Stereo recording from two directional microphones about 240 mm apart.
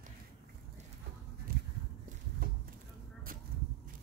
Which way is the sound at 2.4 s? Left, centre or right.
Right.